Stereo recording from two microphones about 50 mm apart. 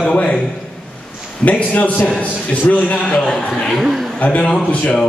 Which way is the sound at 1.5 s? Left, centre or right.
Left.